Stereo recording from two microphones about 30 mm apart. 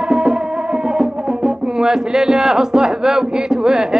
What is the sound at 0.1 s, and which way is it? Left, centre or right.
Music, right.